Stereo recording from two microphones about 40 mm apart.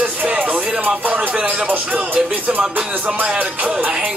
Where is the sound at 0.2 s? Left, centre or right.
Right.